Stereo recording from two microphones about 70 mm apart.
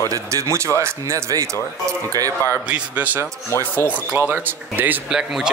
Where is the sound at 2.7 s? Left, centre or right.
Right.